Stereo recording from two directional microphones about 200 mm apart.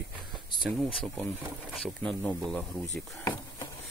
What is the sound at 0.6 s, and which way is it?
Speech, centre (ahead or behind).